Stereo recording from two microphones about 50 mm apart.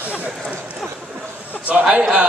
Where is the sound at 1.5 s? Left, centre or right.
Centre.